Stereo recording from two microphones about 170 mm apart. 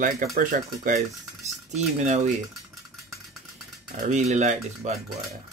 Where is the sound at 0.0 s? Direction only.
55° right (ahead or behind).